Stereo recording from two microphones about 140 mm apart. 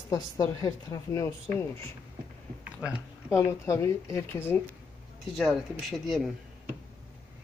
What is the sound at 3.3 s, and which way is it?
Speech, 20° left (ahead or behind).